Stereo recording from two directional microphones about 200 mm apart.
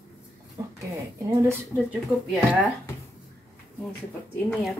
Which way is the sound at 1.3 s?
15° right (ahead or behind).